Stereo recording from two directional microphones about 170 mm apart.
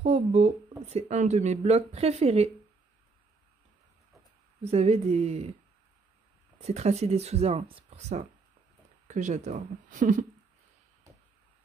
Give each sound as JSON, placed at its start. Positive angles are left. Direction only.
{"t": 0.0, "sound": "speech", "side_deg": -35}
{"t": 4.6, "sound": "speech", "side_deg": -35}
{"t": 6.6, "sound": "speech", "side_deg": -40}